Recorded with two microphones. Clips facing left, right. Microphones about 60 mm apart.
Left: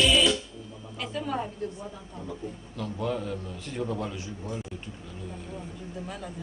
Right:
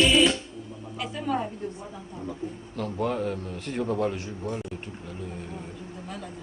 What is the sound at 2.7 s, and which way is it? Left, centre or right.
A man's voice, right.